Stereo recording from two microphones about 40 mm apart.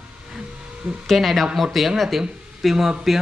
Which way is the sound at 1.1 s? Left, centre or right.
Centre.